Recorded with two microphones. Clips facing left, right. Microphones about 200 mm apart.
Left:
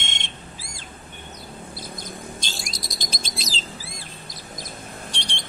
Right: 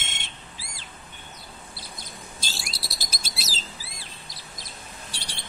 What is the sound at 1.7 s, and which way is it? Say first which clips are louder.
Bird: left 7 dB; 50° left (ahead or behind).